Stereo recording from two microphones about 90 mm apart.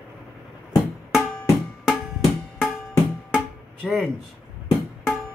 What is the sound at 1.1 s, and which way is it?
Music, centre (ahead or behind).